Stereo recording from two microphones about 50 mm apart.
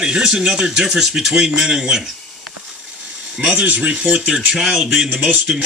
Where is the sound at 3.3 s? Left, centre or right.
Right.